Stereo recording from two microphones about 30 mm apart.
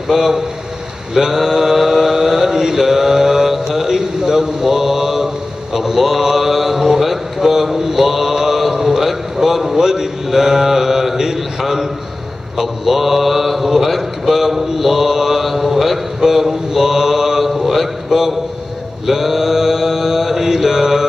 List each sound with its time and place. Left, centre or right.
0.1 s mantra: centre
2.8 s speech: centre
8.7 s a sound: centre
9.8 s mantra: centre